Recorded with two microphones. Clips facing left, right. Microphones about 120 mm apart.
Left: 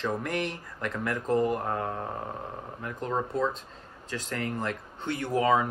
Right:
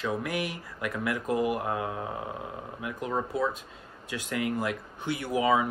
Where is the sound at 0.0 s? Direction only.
5° right (ahead or behind).